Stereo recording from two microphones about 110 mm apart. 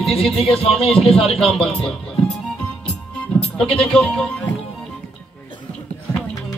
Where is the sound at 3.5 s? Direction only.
5° left (ahead or behind).